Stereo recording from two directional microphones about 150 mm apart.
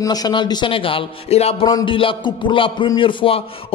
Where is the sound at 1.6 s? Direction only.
30° left (ahead or behind).